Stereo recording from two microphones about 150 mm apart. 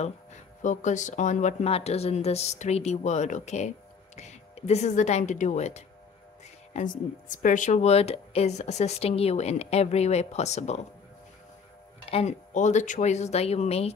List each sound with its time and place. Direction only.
0.6 s speech: 55° left (ahead or behind)
6.7 s speech: 60° left (ahead or behind)
12.1 s speech: 45° left (ahead or behind)